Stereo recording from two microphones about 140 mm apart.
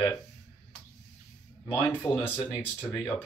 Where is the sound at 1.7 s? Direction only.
15° left (ahead or behind).